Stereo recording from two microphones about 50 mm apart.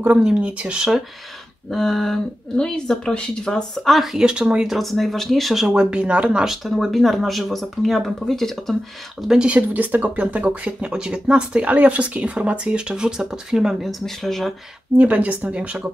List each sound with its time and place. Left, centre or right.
0.2 s speech: centre
1.7 s speech: centre
4.2 s speech: centre
4.6 s speech: centre
5.7 s speech: right
6.4 s speech: centre
9.6 s speech: right; by 13.8 s centre
13.8 s speech: centre
15.0 s speech: right